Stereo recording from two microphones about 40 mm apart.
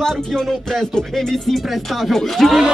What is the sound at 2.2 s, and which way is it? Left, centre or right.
Speech, centre.